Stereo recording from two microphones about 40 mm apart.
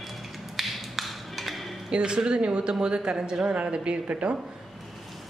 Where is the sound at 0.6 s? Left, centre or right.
Centre.